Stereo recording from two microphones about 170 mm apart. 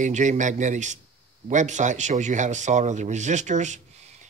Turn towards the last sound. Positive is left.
turn(degrees=-45)  # may be behind; listen again after turning